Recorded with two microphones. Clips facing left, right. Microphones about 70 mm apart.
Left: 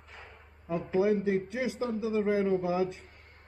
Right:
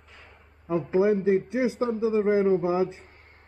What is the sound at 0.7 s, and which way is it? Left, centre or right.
A man's voice, right.